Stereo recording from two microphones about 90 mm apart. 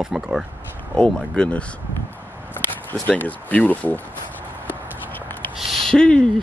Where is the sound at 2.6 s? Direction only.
20° left (ahead or behind).